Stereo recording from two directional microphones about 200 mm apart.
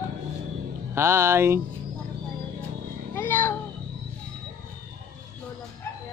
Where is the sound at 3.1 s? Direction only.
10° left (ahead or behind).